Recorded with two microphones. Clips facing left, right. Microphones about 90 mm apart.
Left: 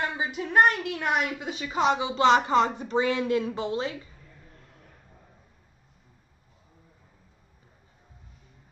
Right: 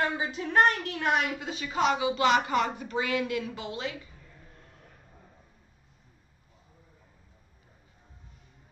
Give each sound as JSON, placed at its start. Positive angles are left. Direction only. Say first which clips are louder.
{"t": 0.2, "sound": "a woman's voice", "louder": "left 4 dB", "side_deg": 15}